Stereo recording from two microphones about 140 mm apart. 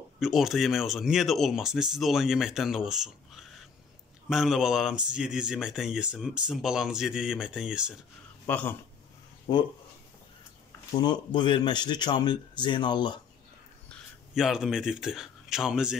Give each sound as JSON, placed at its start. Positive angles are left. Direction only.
{"t": 0.2, "sound": "speech", "side_deg": 0}
{"t": 8.5, "sound": "speech", "side_deg": 10}
{"t": 11.0, "sound": "speech", "side_deg": 30}
{"t": 14.3, "sound": "speech", "side_deg": -5}